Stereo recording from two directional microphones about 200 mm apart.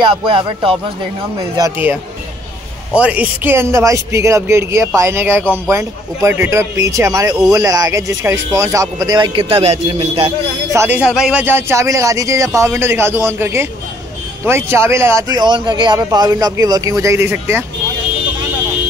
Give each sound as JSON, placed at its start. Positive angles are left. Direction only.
{"t": 0.0, "sound": "speech", "side_deg": -25}
{"t": 1.6, "sound": "speech", "side_deg": -10}
{"t": 10.7, "sound": "speech", "side_deg": -10}